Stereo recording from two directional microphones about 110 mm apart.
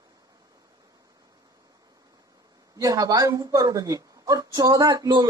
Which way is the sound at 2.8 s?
35° right (ahead or behind).